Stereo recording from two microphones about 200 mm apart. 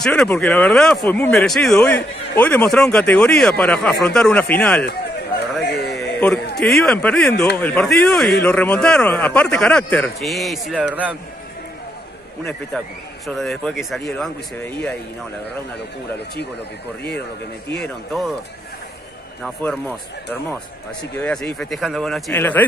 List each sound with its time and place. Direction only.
0.0 s speech: 5° left (ahead or behind)
5.7 s a sound: 55° left (ahead or behind)
5.9 s a sound: 5° left (ahead or behind)
6.8 s speech: 5° left (ahead or behind)
12.7 s speech: 5° left (ahead or behind)
17.7 s speech: centre (ahead or behind)
19.4 s speech: 5° left (ahead or behind)
21.2 s a man's voice: 5° left (ahead or behind)